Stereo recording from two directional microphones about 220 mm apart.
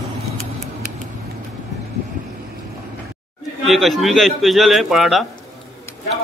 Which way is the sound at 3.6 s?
Centre (ahead or behind).